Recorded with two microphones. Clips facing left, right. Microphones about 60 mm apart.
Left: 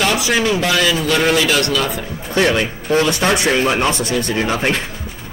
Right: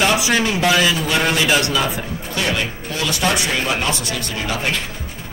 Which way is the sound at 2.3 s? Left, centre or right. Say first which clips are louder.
Left 7 dB; left.